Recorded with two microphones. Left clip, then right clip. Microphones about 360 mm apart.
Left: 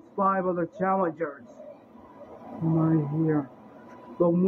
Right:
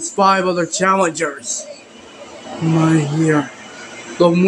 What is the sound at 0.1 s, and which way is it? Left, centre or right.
Speech, left.